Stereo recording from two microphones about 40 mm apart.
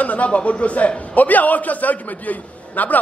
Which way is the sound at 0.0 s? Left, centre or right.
Left.